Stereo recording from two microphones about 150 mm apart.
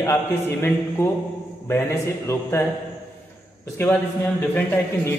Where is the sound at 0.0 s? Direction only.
20° left (ahead or behind).